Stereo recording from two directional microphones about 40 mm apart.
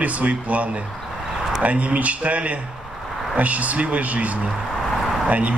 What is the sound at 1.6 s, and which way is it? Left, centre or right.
Speech, right.